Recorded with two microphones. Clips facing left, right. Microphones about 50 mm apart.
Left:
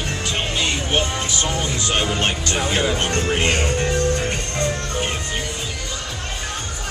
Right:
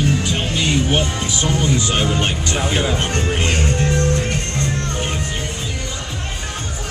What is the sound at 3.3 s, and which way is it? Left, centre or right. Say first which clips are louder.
Music: even; centre.